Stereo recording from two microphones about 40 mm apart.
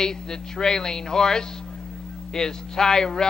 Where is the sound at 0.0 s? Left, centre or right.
Centre.